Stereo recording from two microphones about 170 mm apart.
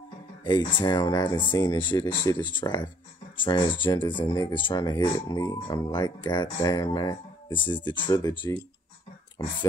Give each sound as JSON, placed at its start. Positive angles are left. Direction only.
{"t": 0.4, "sound": "speech", "side_deg": 25}